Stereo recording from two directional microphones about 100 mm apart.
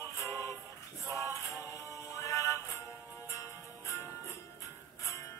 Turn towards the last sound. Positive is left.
turn(degrees=25)  # may be behind; listen again after turning